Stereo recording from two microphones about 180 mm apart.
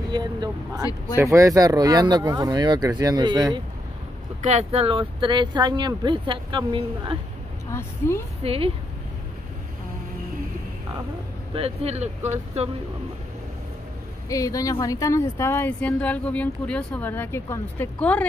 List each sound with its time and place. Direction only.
0.1 s speech: 25° right (ahead or behind)
4.4 s speech: 40° right (ahead or behind)
8.0 s a woman's voice: 15° left (ahead or behind)
8.5 s speech: 30° right (ahead or behind)
11.5 s speech: 35° right (ahead or behind)
14.3 s a woman's voice: 20° left (ahead or behind)